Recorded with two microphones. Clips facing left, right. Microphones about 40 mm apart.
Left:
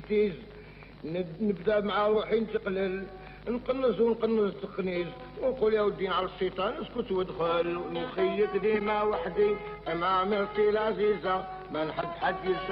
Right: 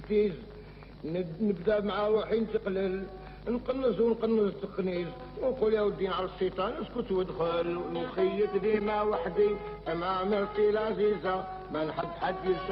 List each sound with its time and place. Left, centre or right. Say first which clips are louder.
0.1 s speech: even; left
1.0 s music: even; centre